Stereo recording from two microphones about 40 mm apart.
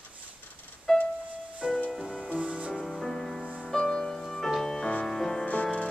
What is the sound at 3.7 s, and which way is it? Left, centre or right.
Music, centre.